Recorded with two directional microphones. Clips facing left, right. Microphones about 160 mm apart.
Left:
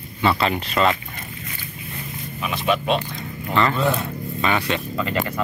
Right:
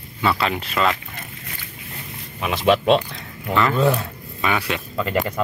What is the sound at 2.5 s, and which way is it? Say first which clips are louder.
Speech: right 5 dB; 90° right.